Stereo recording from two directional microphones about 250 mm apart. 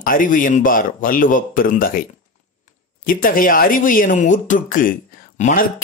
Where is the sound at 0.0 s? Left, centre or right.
Left.